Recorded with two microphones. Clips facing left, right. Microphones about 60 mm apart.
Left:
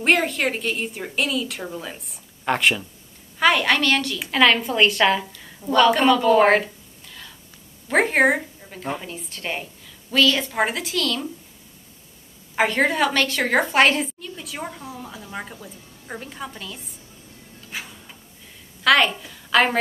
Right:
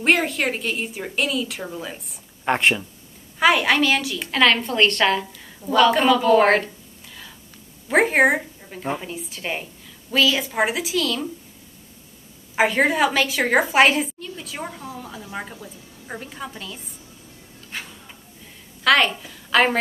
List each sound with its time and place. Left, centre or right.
0.0 s a woman's voice: centre
2.4 s speech: centre
3.3 s a woman's voice: centre
7.9 s a woman's voice: centre
12.5 s a woman's voice: centre
17.6 s music: centre
18.9 s a woman's voice: centre